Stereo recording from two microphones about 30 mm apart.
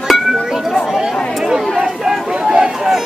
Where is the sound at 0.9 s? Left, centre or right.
Centre.